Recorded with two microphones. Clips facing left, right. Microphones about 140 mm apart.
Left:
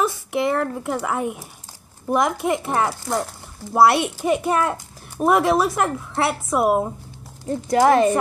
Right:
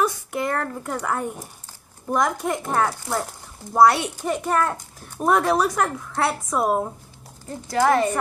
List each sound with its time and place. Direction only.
0.0 s a child's voice: 10° left (ahead or behind)
7.6 s speech: 20° left (ahead or behind)